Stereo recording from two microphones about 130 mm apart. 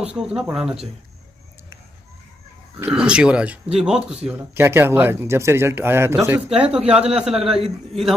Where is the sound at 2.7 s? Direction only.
10° right (ahead or behind).